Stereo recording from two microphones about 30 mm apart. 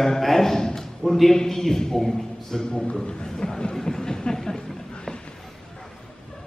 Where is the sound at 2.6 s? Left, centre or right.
Left.